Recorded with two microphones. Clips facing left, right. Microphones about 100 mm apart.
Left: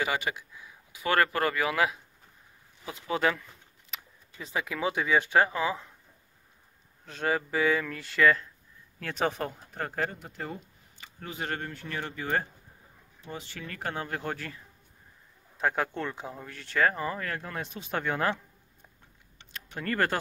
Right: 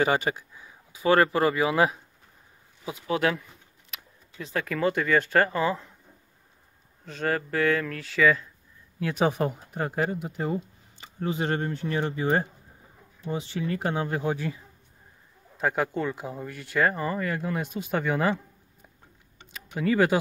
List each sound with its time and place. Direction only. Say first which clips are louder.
0.0 s speech: right 6 dB; 35° right (ahead or behind)
3.1 s speech: right 2 dB; centre (ahead or behind)
7.1 s speech: right 1 dB; centre (ahead or behind); by 14.6 s 15° right (ahead or behind)
15.5 s speech: right 3 dB; centre (ahead or behind)
19.5 s speech: right 7 dB; 5° right (ahead or behind)